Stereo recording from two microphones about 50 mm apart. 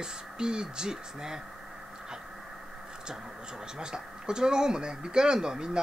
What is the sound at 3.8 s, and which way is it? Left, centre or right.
Speech, centre.